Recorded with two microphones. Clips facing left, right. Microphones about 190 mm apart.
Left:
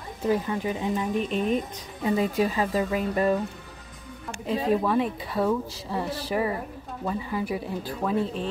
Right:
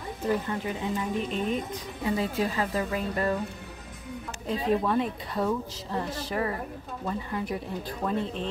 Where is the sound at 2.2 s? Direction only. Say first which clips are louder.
Left 5 dB; 15° left (ahead or behind).